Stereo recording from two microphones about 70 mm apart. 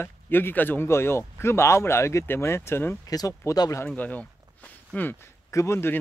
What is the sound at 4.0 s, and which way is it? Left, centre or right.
Speech, left.